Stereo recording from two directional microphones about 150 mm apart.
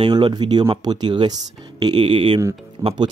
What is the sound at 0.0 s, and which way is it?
Speech, 30° right (ahead or behind).